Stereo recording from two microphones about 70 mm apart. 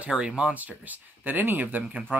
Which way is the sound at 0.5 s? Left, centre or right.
Right.